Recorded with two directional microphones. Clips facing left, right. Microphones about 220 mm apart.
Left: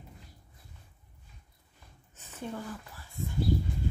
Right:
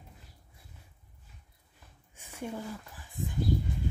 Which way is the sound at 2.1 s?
10° right (ahead or behind).